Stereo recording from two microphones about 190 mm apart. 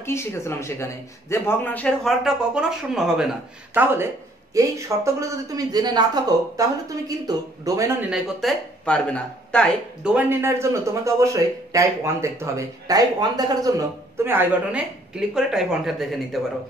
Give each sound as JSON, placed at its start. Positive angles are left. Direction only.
{"t": 0.0, "sound": "a man's voice", "side_deg": 15}
{"t": 8.1, "sound": "speech", "side_deg": 0}
{"t": 10.0, "sound": "a man's voice", "side_deg": -10}